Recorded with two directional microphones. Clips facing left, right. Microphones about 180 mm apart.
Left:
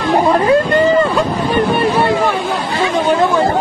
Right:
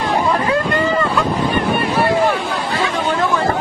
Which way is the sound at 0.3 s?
30° left (ahead or behind).